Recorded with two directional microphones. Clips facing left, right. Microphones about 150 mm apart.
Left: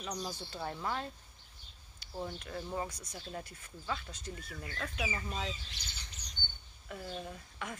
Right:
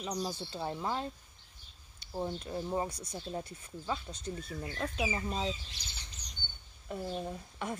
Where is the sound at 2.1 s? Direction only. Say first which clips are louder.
Right 4 dB; 25° right (ahead or behind).